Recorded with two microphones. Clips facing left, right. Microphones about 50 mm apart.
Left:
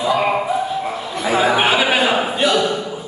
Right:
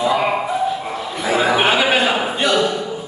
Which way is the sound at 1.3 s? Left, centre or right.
Centre.